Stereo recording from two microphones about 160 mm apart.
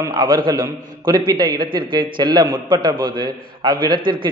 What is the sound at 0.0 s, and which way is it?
A man's voice, 25° right (ahead or behind).